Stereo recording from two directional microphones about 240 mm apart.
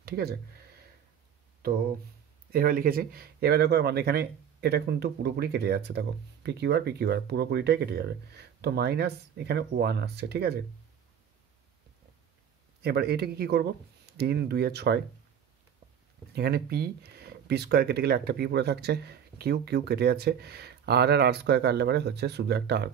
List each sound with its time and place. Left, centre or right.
0.0 s speech: right
2.5 s speech: right
12.8 s speech: right
16.3 s speech: right